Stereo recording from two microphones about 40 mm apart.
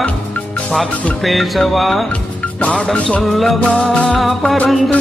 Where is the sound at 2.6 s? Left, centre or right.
Left.